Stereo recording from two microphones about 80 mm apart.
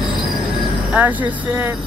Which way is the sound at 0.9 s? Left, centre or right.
Right.